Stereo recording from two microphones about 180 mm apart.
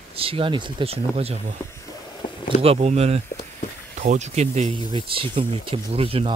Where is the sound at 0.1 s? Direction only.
30° right (ahead or behind).